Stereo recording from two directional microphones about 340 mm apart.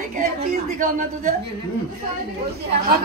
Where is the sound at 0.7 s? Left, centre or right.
Right.